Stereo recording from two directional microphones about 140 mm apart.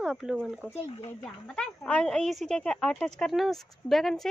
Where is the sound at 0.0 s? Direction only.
5° right (ahead or behind).